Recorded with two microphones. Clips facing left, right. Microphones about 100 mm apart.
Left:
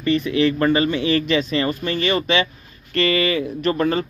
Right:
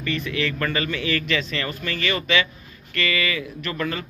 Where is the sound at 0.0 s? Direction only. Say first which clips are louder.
Left 8 dB; 25° left (ahead or behind).